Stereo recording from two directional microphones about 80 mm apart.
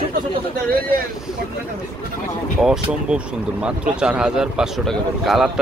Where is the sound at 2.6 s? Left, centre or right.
Centre.